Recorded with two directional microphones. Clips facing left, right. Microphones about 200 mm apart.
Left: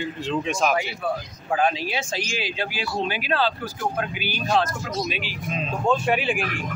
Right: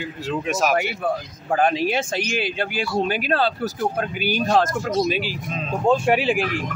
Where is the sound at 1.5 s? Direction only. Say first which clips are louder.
Right 4 dB; 50° right (ahead or behind); by 6.4 s 30° right (ahead or behind).